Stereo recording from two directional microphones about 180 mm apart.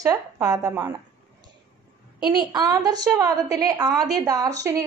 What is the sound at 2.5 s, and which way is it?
A woman's voice, 20° right (ahead or behind).